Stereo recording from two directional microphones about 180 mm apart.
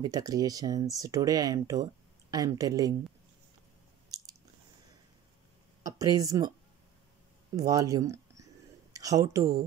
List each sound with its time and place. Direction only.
0.0 s speech: 20° right (ahead or behind)
4.1 s biting: 20° right (ahead or behind)
5.9 s speech: 20° right (ahead or behind)
7.5 s speech: 20° right (ahead or behind)